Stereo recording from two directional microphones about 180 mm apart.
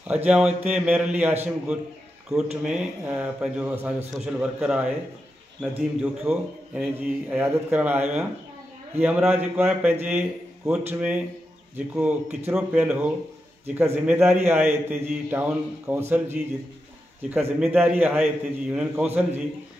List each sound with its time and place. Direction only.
0.1 s a man's voice: 5° right (ahead or behind)
6.1 s a man's voice: 10° right (ahead or behind)